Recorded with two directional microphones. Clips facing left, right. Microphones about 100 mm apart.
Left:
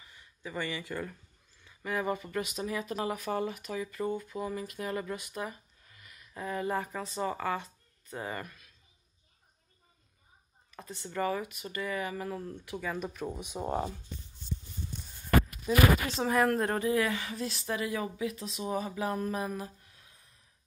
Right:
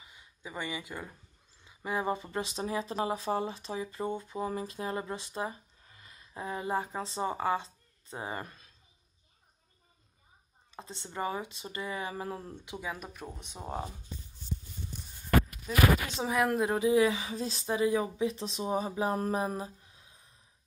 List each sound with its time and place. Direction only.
0.0 s a sound: 20° right (ahead or behind)
1.6 s speech: 20° right (ahead or behind)
10.7 s speech: 25° right (ahead or behind)
12.7 s speech: 10° right (ahead or behind)
16.2 s speech: 10° right (ahead or behind)
17.4 s speech: 30° right (ahead or behind)